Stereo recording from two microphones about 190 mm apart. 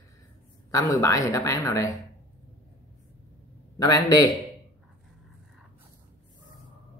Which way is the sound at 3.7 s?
20° left (ahead or behind).